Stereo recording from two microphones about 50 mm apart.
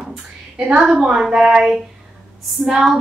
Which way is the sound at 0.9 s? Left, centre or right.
Centre.